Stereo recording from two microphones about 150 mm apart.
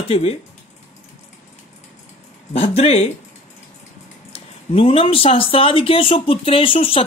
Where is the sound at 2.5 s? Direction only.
45° left (ahead or behind).